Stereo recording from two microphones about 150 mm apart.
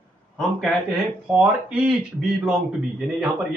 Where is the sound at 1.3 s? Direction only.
5° right (ahead or behind).